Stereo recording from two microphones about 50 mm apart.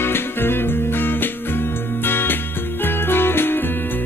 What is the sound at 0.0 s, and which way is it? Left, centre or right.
Music, left.